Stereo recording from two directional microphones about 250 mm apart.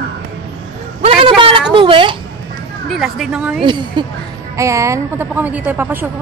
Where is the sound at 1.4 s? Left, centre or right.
Centre.